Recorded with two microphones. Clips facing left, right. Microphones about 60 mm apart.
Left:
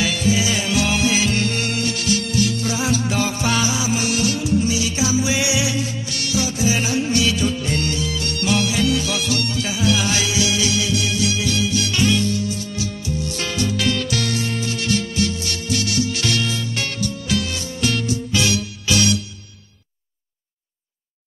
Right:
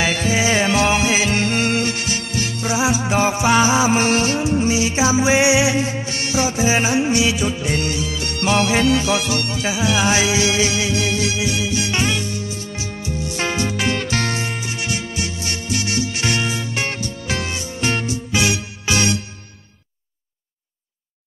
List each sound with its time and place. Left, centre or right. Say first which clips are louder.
0.0 s music: right 1 dB; right
11.3 s music: even; right